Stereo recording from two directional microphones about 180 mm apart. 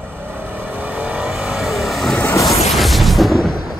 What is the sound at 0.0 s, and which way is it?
Vehicle, 10° right (ahead or behind).